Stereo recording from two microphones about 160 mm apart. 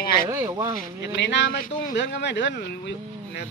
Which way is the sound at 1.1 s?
90° left.